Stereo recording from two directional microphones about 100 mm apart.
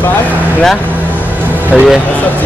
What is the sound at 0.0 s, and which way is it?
Vehicle, 20° left (ahead or behind).